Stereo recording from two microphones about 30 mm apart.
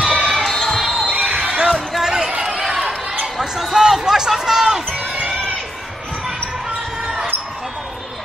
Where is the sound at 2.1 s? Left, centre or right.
Centre.